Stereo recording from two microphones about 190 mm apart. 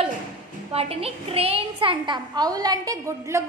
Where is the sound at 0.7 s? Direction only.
30° right (ahead or behind); by 3.4 s 15° right (ahead or behind).